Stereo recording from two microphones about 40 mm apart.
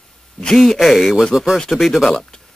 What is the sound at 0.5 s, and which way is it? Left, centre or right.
Speech, centre.